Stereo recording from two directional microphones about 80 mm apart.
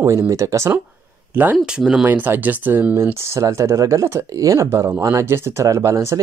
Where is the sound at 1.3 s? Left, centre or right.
Right.